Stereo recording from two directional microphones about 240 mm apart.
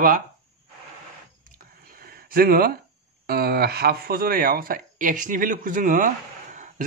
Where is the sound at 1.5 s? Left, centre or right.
Right.